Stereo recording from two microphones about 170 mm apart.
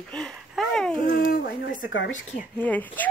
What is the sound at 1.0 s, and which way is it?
Speech, 60° left (ahead or behind).